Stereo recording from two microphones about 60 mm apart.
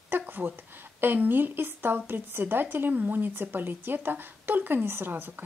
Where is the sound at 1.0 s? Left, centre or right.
Right.